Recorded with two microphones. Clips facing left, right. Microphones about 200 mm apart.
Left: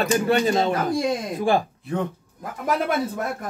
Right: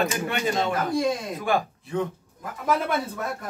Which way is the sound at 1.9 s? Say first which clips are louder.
Left 1 dB; 60° left (ahead or behind).